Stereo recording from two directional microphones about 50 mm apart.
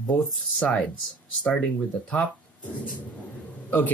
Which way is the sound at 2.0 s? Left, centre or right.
Left.